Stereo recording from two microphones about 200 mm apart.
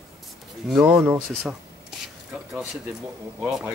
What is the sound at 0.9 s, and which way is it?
Speech, 10° right (ahead or behind).